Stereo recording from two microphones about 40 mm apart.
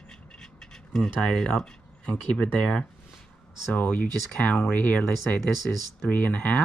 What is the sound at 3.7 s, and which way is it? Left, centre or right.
Speech, left.